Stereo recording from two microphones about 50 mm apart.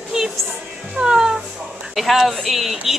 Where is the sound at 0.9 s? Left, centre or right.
Centre.